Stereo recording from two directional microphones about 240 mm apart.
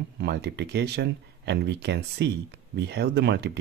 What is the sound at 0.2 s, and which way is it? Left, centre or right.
Speech, right.